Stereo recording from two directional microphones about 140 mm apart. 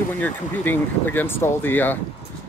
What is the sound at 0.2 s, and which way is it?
Speech, 15° left (ahead or behind).